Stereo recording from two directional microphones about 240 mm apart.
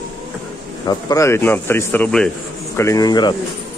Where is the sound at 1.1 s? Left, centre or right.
Centre.